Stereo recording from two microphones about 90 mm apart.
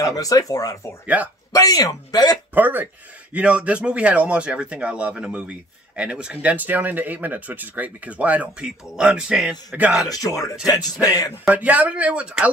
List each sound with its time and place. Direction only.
0.0 s speech: 40° left (ahead or behind)
1.0 s speech: 15° right (ahead or behind)
1.5 s speech: 40° left (ahead or behind)
2.5 s speech: 20° right (ahead or behind)
10.7 s speech: 45° left (ahead or behind)
11.4 s speech: 15° right (ahead or behind)